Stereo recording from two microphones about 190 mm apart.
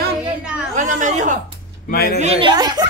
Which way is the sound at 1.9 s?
55° left (ahead or behind).